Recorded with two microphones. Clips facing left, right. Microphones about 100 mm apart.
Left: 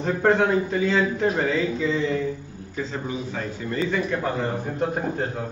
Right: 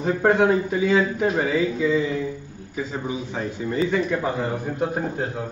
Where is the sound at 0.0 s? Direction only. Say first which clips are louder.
Right 1 dB; 10° right (ahead or behind).